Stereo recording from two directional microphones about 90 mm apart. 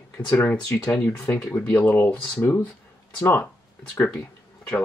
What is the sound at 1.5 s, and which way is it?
Speech, 20° left (ahead or behind).